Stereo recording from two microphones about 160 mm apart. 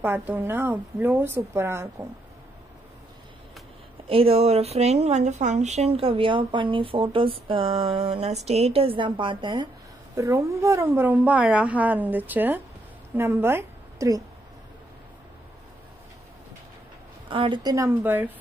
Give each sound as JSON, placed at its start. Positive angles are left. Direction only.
{"t": 0.0, "sound": "a woman's voice", "side_deg": -15}
{"t": 4.1, "sound": "a woman's voice", "side_deg": -35}
{"t": 17.3, "sound": "a woman's voice", "side_deg": -30}